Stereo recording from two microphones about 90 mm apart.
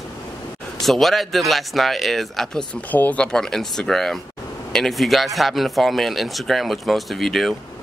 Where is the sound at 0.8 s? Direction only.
Centre (ahead or behind).